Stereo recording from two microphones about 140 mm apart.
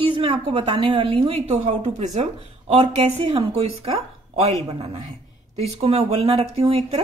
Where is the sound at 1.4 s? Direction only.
50° right (ahead or behind).